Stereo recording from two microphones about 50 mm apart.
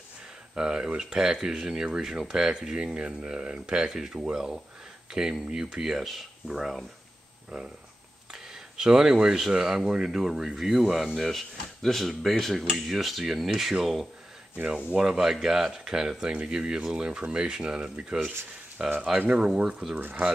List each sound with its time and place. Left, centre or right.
0.6 s speech: centre
14.7 s speech: centre
19.1 s speech: right
19.4 s speech: centre
20.0 s speech: right